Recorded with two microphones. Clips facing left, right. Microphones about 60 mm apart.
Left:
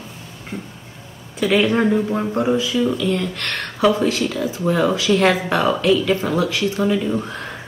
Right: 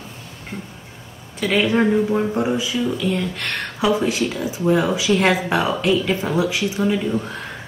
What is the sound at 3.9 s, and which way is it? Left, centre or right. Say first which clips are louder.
Speech: left 1 dB; centre.